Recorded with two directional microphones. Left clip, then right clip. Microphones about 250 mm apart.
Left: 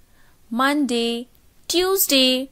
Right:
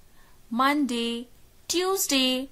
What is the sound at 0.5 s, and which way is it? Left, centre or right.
A woman's voice, centre.